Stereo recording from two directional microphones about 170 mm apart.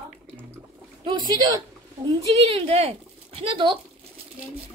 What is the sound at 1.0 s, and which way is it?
A man's voice, 25° right (ahead or behind).